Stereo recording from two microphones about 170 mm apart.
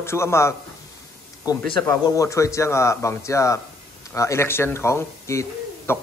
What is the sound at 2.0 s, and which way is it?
Speech, 20° left (ahead or behind).